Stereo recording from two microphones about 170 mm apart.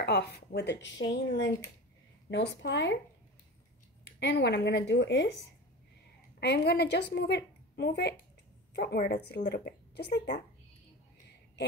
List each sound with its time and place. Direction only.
0.0 s speech: 70° left (ahead or behind); by 3.0 s 90° left
4.0 s speech: 85° left
6.4 s a woman's voice: 75° left (ahead or behind)